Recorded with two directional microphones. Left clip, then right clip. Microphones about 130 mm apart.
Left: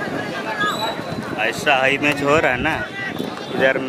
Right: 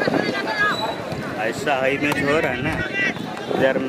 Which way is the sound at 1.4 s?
35° left (ahead or behind).